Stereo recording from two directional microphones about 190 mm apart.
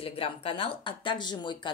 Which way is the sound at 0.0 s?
30° left (ahead or behind).